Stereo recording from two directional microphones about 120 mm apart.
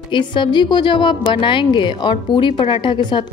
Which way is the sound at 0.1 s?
40° left (ahead or behind).